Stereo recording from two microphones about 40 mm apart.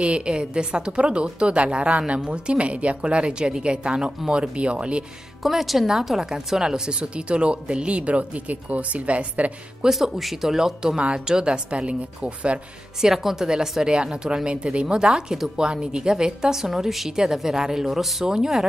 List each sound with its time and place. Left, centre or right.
0.0 s a woman's voice: right
5.4 s speech: centre
6.6 s a woman's voice: centre
9.8 s a woman's voice: centre; by 12.5 s right
13.0 s a woman's voice: centre